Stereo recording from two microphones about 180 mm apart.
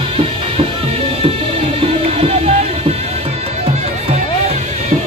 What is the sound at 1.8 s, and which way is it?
Music, 35° right (ahead or behind).